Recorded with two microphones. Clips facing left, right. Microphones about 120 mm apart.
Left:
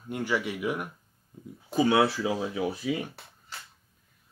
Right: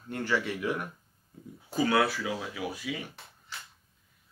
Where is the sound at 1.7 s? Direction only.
20° left (ahead or behind).